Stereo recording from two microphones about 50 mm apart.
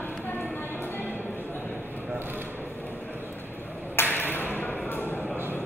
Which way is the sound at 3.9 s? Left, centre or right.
Left.